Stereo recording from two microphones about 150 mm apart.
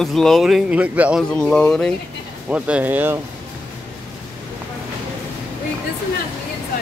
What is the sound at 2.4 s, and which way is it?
Speech, 10° right (ahead or behind).